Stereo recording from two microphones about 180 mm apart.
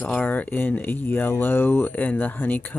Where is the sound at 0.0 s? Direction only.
10° left (ahead or behind).